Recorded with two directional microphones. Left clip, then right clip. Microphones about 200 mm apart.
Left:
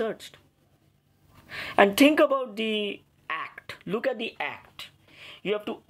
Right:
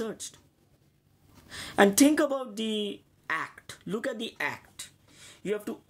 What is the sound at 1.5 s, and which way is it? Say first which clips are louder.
Speech: left 2 dB; 15° right (ahead or behind).